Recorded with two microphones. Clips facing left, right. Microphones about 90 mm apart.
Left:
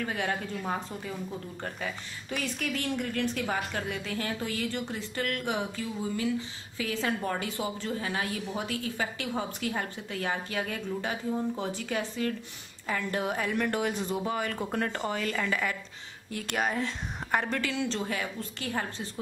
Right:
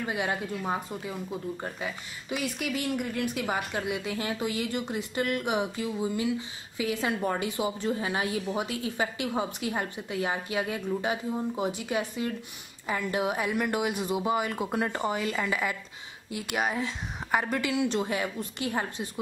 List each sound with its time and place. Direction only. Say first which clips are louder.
0.0 s a woman's voice: right 1 dB; 10° right (ahead or behind)